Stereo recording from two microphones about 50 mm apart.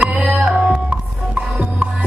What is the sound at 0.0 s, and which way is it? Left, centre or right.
Music, centre.